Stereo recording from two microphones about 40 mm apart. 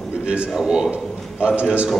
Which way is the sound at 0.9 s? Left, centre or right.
Right.